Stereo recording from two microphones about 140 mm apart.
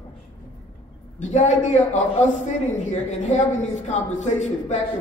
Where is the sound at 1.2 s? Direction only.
60° left (ahead or behind).